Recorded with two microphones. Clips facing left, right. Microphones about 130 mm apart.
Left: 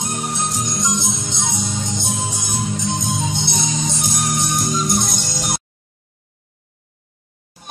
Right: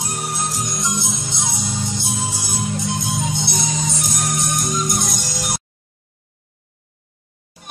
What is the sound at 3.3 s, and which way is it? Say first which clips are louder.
Music: left 1 dB; 5° right (ahead or behind).